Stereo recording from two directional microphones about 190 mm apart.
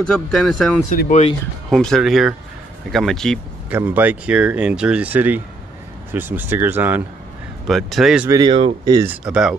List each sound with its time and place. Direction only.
0.3 s speech: 5° left (ahead or behind)
0.8 s speech: 40° left (ahead or behind)
1.7 s speech: centre (ahead or behind)
3.7 s speech: 10° right (ahead or behind)
7.6 s speech: centre (ahead or behind)
8.3 s speech: 25° right (ahead or behind)
9.1 s speech: 5° right (ahead or behind)